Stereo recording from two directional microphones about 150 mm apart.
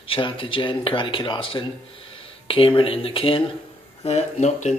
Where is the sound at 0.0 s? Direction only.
35° left (ahead or behind).